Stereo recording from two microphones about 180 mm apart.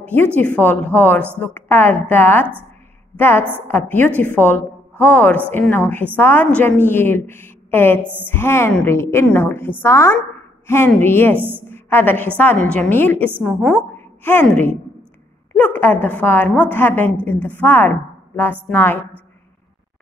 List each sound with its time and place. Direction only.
0.0 s a woman's voice: 10° left (ahead or behind)
11.3 s a woman's voice: 10° right (ahead or behind)
11.7 s a woman's voice: 10° left (ahead or behind)